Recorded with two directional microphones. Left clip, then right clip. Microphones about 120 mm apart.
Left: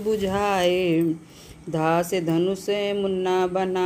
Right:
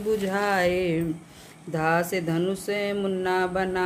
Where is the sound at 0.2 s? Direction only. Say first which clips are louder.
Left 2 dB; 40° left (ahead or behind).